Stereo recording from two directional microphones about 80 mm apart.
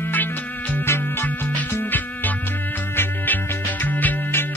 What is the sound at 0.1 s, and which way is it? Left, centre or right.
Music, left.